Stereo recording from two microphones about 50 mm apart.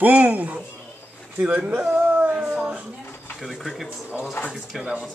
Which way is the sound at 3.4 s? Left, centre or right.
Centre.